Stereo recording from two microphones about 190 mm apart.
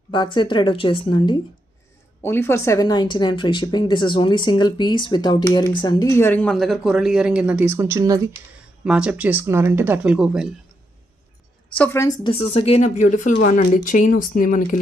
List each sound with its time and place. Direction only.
0.1 s speech: 25° left (ahead or behind)
2.2 s speech: 15° left (ahead or behind); by 8.2 s 15° right (ahead or behind)
8.8 s speech: 5° right (ahead or behind)
11.7 s speech: 10° left (ahead or behind); by 14.8 s 45° left (ahead or behind)